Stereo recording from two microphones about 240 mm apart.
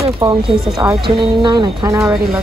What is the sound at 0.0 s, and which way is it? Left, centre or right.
Speech, centre.